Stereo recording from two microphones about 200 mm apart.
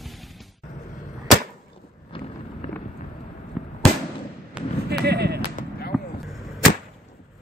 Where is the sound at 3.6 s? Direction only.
5° right (ahead or behind).